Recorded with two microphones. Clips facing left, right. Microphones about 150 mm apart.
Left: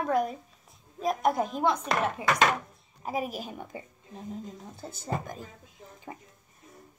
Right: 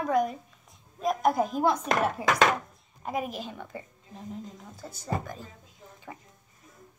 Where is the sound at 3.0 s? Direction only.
5° left (ahead or behind); by 5.4 s 20° left (ahead or behind).